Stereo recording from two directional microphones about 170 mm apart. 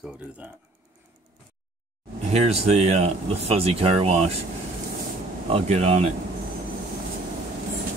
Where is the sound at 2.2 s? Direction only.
40° right (ahead or behind).